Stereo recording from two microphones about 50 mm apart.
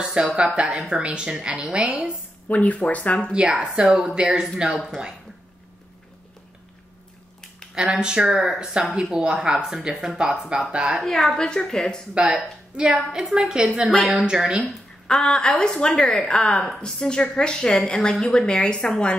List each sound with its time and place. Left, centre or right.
0.0 s a sound: centre
0.6 s speech: right
2.4 s speech: left
3.3 s speech: right
3.6 s speech: centre
4.0 s speech: right
4.8 s speech: centre
7.7 s speech: centre
9.7 s speech: centre
11.1 s a woman's voice: centre
12.1 s speech: centre
14.7 s a sound: centre
15.6 s a woman's voice: centre